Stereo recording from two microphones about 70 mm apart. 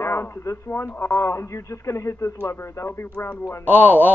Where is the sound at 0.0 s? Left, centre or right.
Left.